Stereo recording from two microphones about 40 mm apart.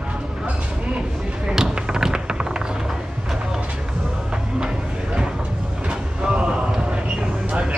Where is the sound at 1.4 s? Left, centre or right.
Centre.